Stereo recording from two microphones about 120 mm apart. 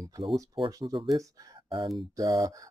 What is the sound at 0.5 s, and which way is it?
Speech, 45° right (ahead or behind).